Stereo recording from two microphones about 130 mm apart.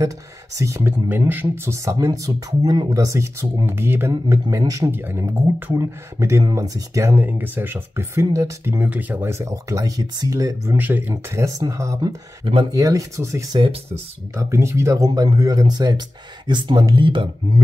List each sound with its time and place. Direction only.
0.6 s speech: 25° right (ahead or behind)
1.0 s speech: 15° right (ahead or behind); by 17.3 s 40° right (ahead or behind)